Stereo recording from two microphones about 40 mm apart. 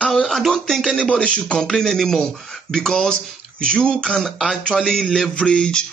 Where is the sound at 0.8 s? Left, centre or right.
Left.